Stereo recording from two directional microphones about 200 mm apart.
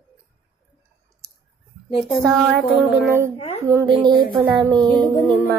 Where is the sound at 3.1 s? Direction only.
15° right (ahead or behind).